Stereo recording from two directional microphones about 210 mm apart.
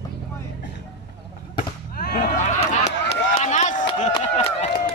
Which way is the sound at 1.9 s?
45° left (ahead or behind).